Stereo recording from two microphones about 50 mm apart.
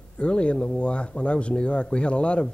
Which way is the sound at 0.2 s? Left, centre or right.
Left.